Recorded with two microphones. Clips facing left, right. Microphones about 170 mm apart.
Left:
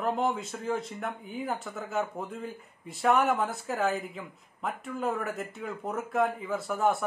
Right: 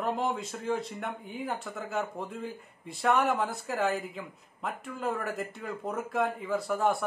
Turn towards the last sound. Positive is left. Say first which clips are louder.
# even
turn(degrees=0)  # may be behind; listen again after turning